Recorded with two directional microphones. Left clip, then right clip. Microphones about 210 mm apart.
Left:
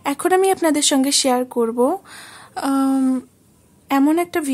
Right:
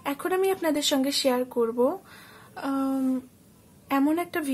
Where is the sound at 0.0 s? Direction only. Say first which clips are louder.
Left 9 dB; 40° left (ahead or behind).